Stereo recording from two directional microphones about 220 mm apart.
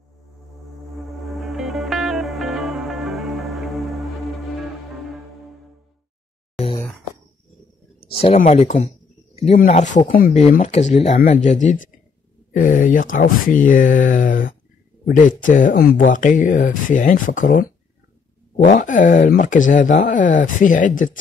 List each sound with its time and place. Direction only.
0.9 s music: centre (ahead or behind)
8.2 s speech: 30° left (ahead or behind)
18.7 s speech: 35° left (ahead or behind)